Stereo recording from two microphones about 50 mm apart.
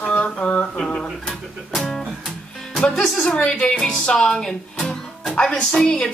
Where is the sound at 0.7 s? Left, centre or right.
Centre.